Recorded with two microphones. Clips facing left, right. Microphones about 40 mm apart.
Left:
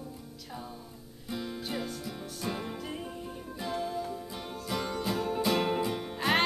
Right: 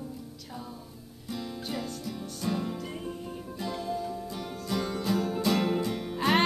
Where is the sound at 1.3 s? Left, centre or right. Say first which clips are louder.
Even; centre.